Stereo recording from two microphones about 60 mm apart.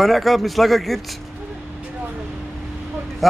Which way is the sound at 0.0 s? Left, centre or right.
Centre.